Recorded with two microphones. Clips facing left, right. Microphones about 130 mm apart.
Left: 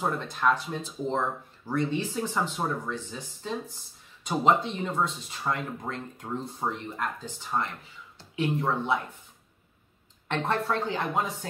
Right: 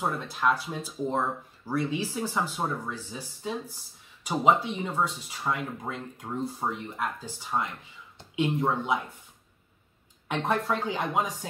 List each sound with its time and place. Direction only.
0.0 s speech: 5° right (ahead or behind)
8.2 s speech: 20° right (ahead or behind)
10.2 s speech: 10° right (ahead or behind)